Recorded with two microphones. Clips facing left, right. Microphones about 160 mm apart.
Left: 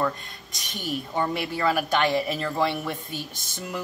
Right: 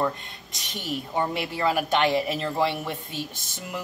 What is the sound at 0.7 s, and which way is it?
Speech, 25° right (ahead or behind).